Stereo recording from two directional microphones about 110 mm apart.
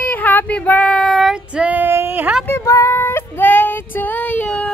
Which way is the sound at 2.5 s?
25° left (ahead or behind).